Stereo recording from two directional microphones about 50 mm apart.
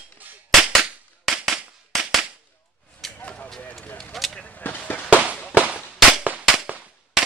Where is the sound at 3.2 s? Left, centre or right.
Left.